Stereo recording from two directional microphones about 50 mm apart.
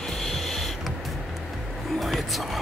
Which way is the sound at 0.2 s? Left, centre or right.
Centre.